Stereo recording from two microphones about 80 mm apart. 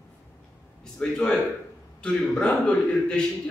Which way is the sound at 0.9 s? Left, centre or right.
Centre.